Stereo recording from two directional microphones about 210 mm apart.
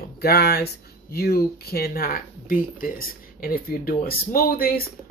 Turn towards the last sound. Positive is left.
turn(degrees=45)  # may be behind; listen again after turning